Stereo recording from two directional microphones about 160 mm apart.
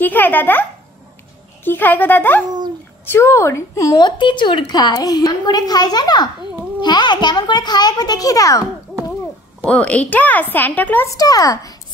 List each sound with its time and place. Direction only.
0.0 s a woman's voice: 10° left (ahead or behind)
9.7 s a woman's voice: 10° left (ahead or behind)
11.1 s a woman's voice: 20° left (ahead or behind)